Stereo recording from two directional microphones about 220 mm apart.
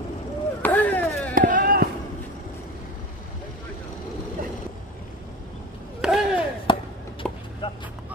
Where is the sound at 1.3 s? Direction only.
40° right (ahead or behind).